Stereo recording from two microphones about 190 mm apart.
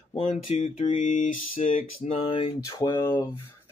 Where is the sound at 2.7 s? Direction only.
20° left (ahead or behind).